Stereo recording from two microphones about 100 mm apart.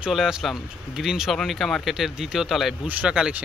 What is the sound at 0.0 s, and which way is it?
Speech, 5° right (ahead or behind).